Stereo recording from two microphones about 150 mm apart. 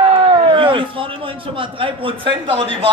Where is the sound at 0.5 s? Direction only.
35° right (ahead or behind).